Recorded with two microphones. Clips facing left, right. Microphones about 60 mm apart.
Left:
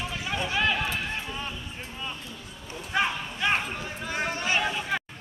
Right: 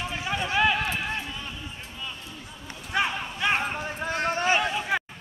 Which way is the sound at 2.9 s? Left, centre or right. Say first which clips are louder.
Even; centre.